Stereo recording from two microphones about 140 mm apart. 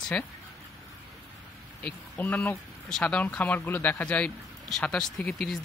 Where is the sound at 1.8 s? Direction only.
10° left (ahead or behind).